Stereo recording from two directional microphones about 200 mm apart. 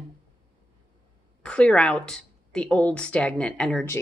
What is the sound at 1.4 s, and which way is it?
A woman's voice, 5° left (ahead or behind).